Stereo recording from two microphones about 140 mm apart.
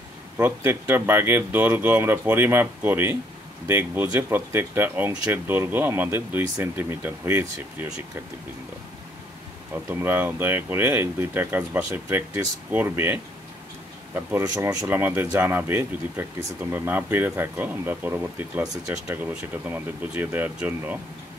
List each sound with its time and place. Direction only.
0.4 s speech: 15° right (ahead or behind)
9.8 s speech: 15° right (ahead or behind)
14.4 s speech: 25° right (ahead or behind)